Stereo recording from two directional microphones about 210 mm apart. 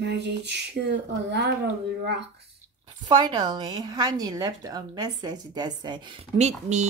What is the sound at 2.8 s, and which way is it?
A woman's voice, 20° right (ahead or behind).